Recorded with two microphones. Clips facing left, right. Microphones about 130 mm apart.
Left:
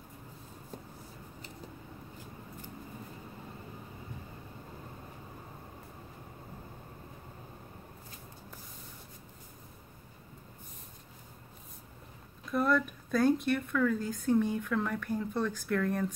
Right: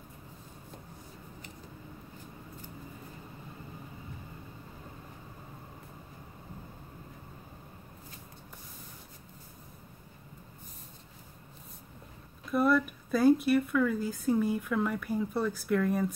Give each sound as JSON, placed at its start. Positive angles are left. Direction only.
{"t": 12.4, "sound": "speech", "side_deg": -5}